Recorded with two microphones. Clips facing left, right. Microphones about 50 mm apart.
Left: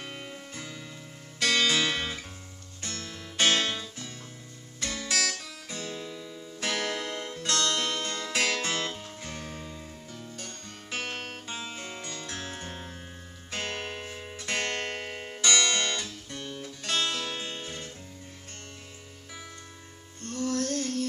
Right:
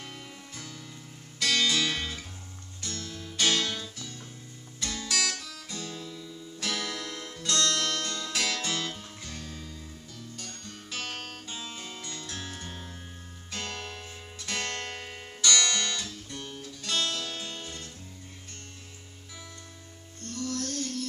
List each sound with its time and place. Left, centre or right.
0.0 s music: left
1.4 s music: left
4.7 s guitar: left
5.4 s music: left
20.2 s music: left